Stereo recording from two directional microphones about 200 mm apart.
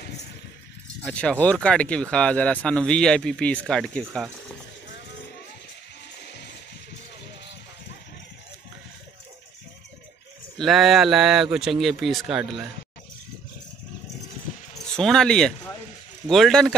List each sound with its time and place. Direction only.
1.0 s speech: 5° left (ahead or behind)
6.1 s music: 55° left (ahead or behind)
10.6 s speech: centre (ahead or behind)
14.9 s speech: 5° left (ahead or behind)